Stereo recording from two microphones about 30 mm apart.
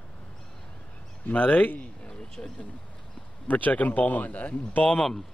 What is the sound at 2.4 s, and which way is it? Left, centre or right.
Speech, left.